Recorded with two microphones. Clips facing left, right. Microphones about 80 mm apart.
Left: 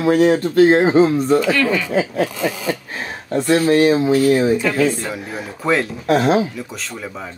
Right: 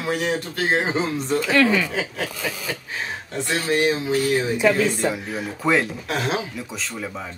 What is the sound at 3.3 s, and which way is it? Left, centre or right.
Speech, left.